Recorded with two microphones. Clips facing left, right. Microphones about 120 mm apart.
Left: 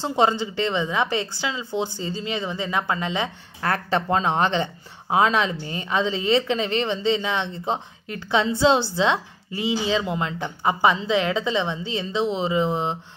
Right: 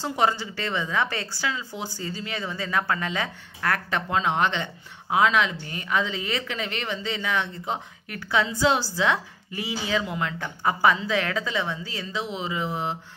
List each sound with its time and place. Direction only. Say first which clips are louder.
0.0 s a woman's voice: left 4 dB; 25° left (ahead or behind)